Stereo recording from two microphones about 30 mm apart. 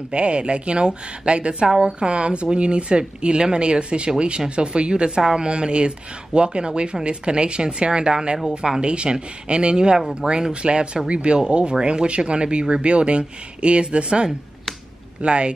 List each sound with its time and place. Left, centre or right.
0.1 s speech: right; by 8.8 s centre
8.8 s speech: right